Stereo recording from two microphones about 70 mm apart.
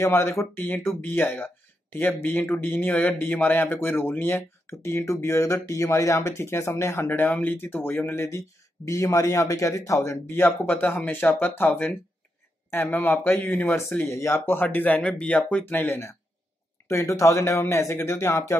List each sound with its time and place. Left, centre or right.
0.0 s speech: left
8.4 s speech: left
10.3 s speech: left
14.1 s speech: left
15.0 s speech: centre
15.2 s speech: left